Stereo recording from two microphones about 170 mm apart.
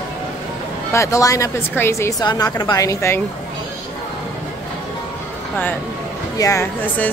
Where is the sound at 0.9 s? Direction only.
15° left (ahead or behind).